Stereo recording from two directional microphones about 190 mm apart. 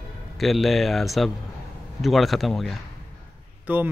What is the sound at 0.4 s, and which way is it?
Speech, centre (ahead or behind).